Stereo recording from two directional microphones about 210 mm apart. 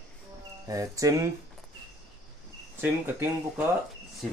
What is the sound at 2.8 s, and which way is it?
Speech, 10° right (ahead or behind).